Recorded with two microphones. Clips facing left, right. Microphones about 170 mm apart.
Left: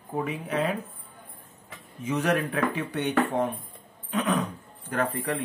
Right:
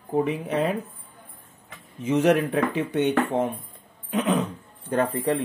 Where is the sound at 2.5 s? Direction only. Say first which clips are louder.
Right 4 dB; 25° right (ahead or behind).